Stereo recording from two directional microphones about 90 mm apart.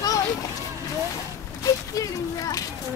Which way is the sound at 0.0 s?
40° left (ahead or behind).